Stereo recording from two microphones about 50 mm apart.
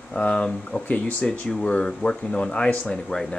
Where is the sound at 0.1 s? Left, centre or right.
Left.